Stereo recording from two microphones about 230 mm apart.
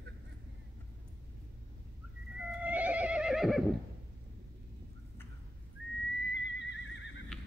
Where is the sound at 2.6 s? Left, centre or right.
Centre.